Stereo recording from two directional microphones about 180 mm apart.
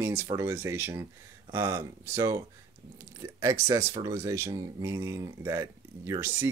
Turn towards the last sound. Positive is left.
turn(degrees=-15)  # may be behind; listen again after turning